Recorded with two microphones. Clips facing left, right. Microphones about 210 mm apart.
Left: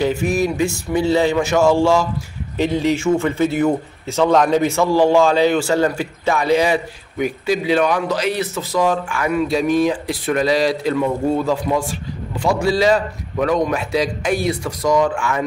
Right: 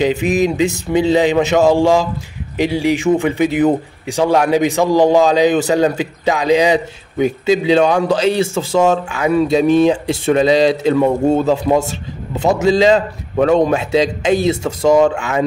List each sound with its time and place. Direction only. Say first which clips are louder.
0.0 s a man's voice: right 3 dB; 20° right (ahead or behind)